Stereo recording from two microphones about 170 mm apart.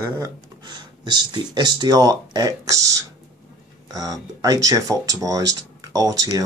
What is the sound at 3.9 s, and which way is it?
Speech, 20° right (ahead or behind).